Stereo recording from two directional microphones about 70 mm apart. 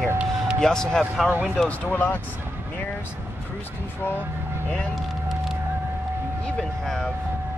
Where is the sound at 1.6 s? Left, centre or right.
Left.